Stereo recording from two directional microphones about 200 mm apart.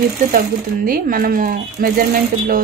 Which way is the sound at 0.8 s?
45° right (ahead or behind).